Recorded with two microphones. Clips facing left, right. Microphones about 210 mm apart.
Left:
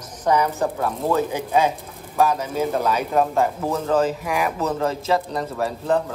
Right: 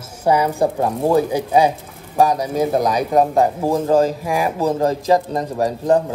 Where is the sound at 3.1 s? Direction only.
35° right (ahead or behind).